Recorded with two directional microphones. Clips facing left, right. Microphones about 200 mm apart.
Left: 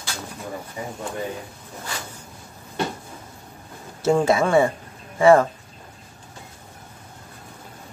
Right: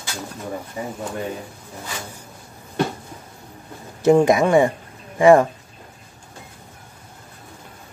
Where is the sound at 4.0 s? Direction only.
15° right (ahead or behind).